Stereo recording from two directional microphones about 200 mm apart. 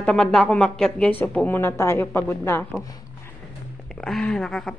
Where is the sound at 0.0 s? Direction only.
5° left (ahead or behind).